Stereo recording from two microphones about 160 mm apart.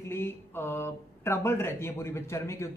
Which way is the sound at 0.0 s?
15° left (ahead or behind).